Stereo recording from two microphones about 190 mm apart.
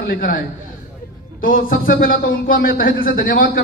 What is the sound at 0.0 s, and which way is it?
A man's voice, 50° left (ahead or behind).